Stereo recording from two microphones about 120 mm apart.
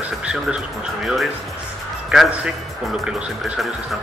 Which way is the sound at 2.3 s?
5° right (ahead or behind).